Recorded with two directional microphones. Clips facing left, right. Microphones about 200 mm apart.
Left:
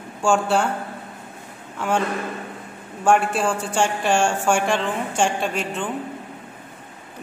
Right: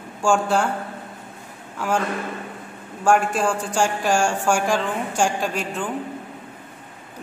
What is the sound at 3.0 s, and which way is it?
Speech, centre (ahead or behind).